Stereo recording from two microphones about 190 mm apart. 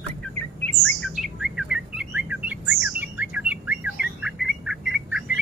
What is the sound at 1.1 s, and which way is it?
Bird, centre (ahead or behind).